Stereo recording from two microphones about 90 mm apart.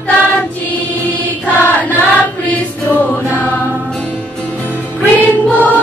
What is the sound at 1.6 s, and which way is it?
Choir, 20° left (ahead or behind).